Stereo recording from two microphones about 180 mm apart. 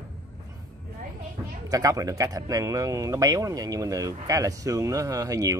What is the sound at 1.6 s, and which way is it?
Speech, 20° right (ahead or behind).